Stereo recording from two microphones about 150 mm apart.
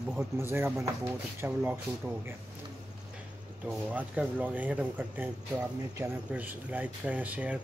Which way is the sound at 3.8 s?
10° right (ahead or behind).